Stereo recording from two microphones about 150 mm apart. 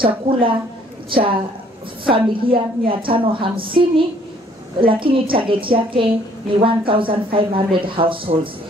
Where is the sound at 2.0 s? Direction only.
35° right (ahead or behind).